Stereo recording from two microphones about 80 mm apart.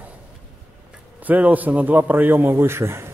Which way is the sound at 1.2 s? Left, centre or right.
Right.